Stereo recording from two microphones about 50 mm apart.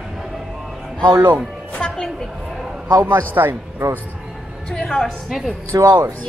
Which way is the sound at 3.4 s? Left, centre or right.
Right.